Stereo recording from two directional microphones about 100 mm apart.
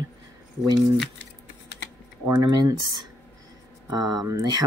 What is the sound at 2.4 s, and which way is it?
Speech, 40° right (ahead or behind).